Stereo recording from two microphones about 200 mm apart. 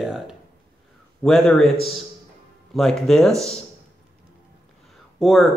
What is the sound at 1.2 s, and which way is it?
Speech, centre (ahead or behind).